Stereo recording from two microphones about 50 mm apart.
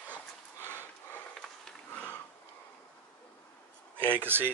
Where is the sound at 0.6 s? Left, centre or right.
Left.